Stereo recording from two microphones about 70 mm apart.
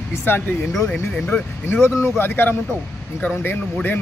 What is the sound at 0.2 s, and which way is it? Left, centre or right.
A man's voice, left.